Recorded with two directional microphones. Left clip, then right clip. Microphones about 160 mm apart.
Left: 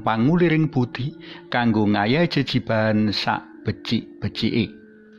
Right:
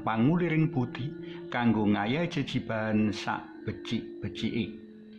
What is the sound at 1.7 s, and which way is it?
Speech, 20° left (ahead or behind).